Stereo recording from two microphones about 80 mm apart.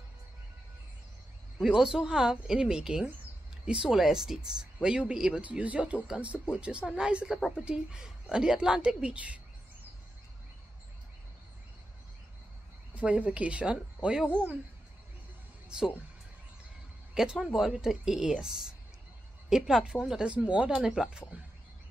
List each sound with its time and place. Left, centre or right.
1.6 s speech: centre
12.9 s speech: centre
15.7 s speech: centre
17.1 s speech: centre